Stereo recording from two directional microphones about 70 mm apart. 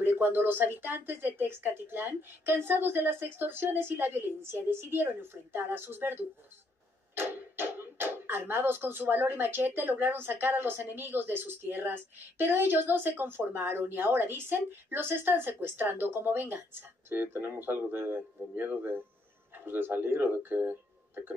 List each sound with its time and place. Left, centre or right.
0.0 s speech: right
7.2 s speech: right